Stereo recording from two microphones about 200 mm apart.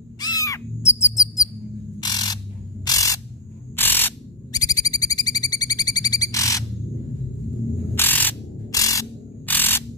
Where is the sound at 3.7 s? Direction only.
10° left (ahead or behind).